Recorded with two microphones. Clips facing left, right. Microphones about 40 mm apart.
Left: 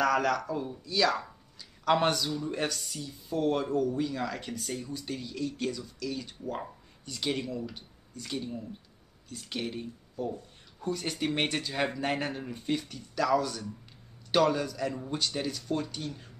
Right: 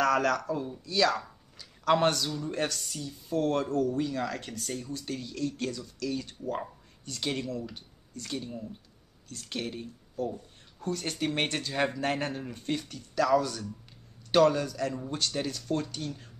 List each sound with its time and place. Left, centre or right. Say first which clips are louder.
0.0 s speech: right 1 dB; centre